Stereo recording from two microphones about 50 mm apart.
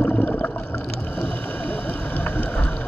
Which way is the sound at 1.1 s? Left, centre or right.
Left.